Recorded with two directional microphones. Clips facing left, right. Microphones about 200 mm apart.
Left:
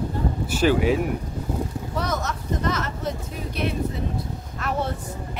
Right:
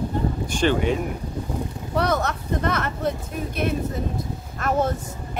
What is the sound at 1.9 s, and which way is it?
Speech, 65° right (ahead or behind).